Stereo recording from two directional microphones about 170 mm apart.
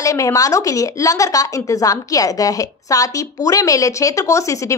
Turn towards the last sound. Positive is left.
turn(degrees=20)  # may be behind; listen again after turning